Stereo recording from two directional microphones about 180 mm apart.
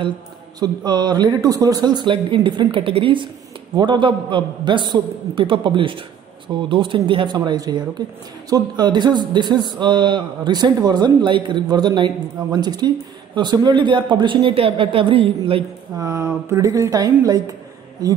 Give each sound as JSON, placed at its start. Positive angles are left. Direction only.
{"t": 0.6, "sound": "speech", "side_deg": -25}
{"t": 16.0, "sound": "a woman's voice", "side_deg": -15}